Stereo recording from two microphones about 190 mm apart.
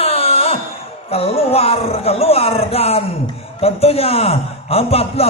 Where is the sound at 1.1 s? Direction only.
30° left (ahead or behind).